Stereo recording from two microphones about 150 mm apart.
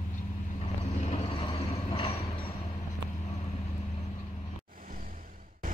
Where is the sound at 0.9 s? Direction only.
45° left (ahead or behind).